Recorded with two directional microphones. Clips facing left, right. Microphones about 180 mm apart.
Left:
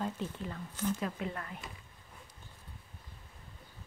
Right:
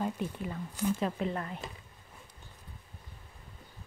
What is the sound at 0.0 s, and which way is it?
Speech, 10° right (ahead or behind).